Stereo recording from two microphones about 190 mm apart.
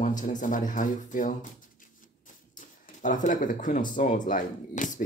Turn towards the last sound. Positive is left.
turn(degrees=45)  # may be behind; listen again after turning